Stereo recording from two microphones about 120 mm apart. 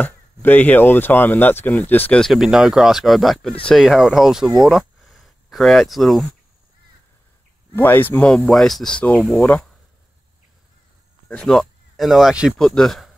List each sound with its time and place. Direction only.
0.0 s speech: 15° left (ahead or behind)
2.2 s speech: 5° right (ahead or behind)
7.7 s speech: 15° left (ahead or behind)
8.4 s speech: centre (ahead or behind)
11.2 s speech: 5° left (ahead or behind)